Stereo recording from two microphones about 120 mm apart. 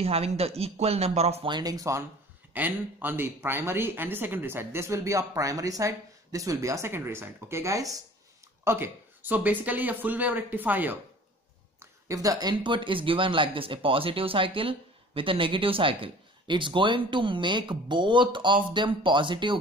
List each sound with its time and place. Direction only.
0.0 s speech: 60° right (ahead or behind)
1.5 s speech: 30° right (ahead or behind)
2.5 s speech: 15° right (ahead or behind)
8.6 s speech: 20° right (ahead or behind)
11.8 s speech: 30° right (ahead or behind)